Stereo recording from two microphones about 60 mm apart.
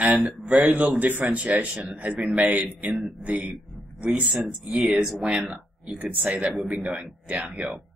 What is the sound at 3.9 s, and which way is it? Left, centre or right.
Speech, right.